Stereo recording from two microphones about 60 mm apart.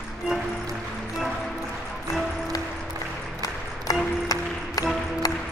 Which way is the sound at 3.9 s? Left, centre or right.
Left.